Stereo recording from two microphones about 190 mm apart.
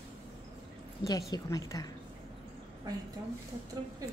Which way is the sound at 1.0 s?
20° left (ahead or behind).